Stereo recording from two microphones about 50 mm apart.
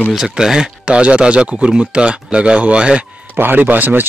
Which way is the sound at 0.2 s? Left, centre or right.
Centre.